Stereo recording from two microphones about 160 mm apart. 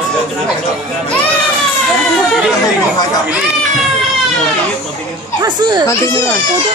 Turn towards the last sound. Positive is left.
turn(degrees=20)  # may be behind; listen again after turning